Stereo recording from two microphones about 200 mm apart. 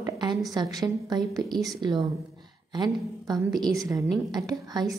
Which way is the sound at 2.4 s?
20° right (ahead or behind).